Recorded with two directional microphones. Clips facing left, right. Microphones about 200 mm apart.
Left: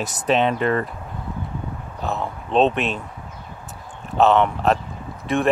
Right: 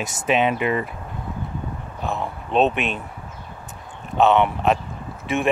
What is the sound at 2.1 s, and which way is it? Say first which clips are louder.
Speech: left 1 dB; centre (ahead or behind).